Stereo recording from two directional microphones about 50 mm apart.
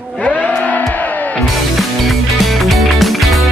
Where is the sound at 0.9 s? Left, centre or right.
Left.